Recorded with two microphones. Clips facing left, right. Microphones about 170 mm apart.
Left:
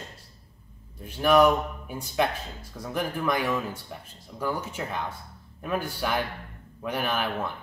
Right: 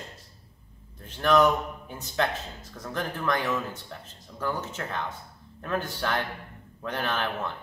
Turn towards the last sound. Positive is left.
turn(degrees=10)  # may be behind; listen again after turning